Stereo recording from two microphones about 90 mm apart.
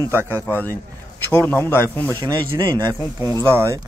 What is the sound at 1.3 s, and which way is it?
Speech, 25° left (ahead or behind).